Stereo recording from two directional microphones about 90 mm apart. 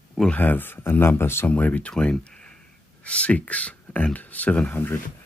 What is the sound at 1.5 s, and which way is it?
Speech, 15° left (ahead or behind).